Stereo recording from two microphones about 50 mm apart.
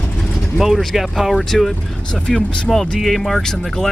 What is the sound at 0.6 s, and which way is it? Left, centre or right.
Speech, centre.